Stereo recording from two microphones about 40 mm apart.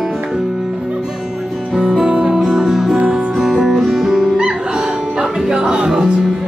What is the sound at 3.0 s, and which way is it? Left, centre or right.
Music, right.